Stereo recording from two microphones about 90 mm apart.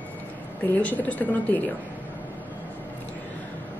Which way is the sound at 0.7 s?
15° left (ahead or behind).